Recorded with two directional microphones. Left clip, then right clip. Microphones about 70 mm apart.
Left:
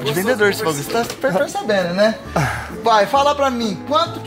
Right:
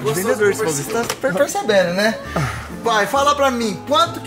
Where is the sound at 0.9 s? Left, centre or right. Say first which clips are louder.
Left 1 dB; centre.